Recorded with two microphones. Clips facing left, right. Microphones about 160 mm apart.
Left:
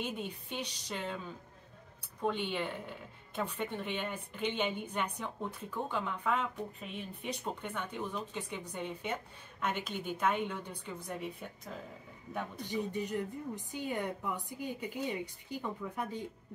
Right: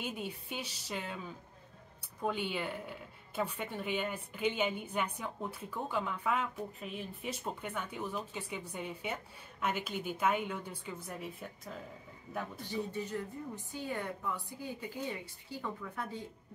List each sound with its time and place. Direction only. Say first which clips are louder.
0.0 s speech: left 1 dB; 5° right (ahead or behind)
2.2 s speech: left 1 dB; 5° right (ahead or behind)
12.6 s a woman's voice: left 3 dB; 15° left (ahead or behind)